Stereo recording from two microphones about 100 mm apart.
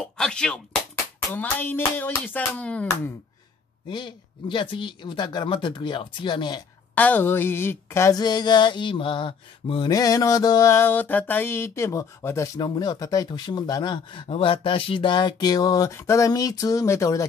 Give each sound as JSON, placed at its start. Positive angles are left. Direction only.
{"t": 0.0, "sound": "speech", "side_deg": 10}
{"t": 1.3, "sound": "a sound", "side_deg": 20}
{"t": 3.9, "sound": "speech", "side_deg": 50}
{"t": 7.0, "sound": "speech", "side_deg": 15}
{"t": 8.2, "sound": "speech", "side_deg": 45}
{"t": 9.8, "sound": "speech", "side_deg": 40}
{"t": 10.7, "sound": "speech", "side_deg": 25}
{"t": 12.5, "sound": "speech", "side_deg": 45}
{"t": 14.3, "sound": "speech", "side_deg": 60}
{"t": 15.9, "sound": "speech", "side_deg": 30}